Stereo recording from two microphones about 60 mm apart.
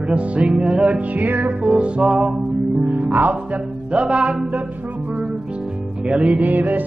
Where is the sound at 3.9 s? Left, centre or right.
Centre.